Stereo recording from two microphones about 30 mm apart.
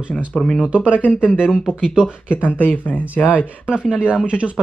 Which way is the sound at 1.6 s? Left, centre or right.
Right.